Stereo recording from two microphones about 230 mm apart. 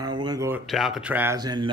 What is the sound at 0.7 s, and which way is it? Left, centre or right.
Speech, centre.